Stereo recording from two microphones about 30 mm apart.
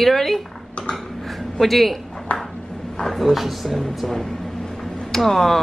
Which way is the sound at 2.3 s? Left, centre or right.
Left.